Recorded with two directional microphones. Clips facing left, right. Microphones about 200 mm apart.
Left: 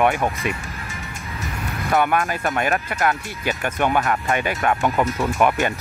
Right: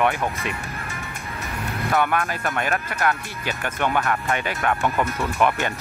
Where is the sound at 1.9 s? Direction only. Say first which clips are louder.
Left 3 dB; 15° left (ahead or behind).